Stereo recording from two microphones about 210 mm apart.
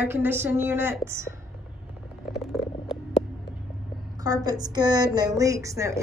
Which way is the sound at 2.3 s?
Centre (ahead or behind).